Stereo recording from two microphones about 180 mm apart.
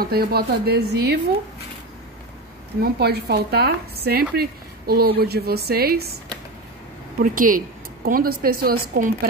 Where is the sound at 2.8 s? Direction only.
65° right (ahead or behind).